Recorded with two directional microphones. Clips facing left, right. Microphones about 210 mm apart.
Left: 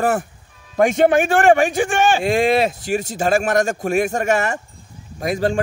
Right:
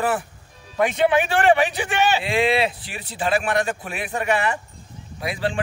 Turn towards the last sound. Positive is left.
turn(degrees=45)  # may be behind; listen again after turning